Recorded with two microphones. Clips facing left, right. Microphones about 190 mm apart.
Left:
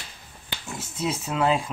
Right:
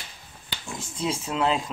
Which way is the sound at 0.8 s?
5° left (ahead or behind).